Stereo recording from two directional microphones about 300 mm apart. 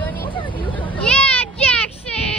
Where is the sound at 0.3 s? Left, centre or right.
Centre.